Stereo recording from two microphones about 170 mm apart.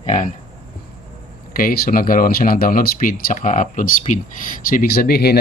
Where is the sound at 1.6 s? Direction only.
55° left (ahead or behind).